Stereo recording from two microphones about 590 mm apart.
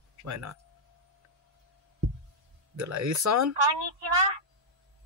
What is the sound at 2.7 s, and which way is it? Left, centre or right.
Speech, right.